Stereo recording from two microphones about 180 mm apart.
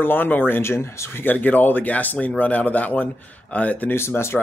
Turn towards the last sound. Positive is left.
turn(degrees=15)  # may be behind; listen again after turning